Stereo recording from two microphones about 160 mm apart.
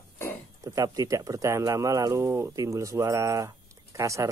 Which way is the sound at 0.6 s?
20° right (ahead or behind).